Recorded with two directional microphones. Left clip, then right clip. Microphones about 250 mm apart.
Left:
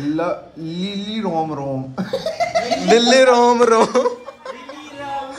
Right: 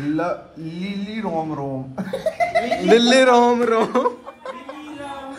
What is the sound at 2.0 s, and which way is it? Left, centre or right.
Speech, left.